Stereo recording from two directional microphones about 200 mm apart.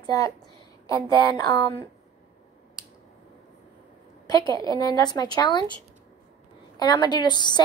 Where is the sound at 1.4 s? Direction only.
20° left (ahead or behind).